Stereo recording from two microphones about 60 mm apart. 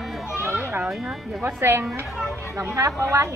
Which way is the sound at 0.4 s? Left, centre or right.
Right.